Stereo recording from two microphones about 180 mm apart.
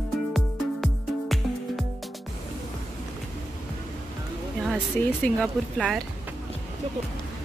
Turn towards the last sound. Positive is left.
turn(degrees=0)  # may be behind; listen again after turning